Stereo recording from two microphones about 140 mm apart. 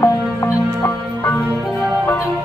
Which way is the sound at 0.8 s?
15° left (ahead or behind).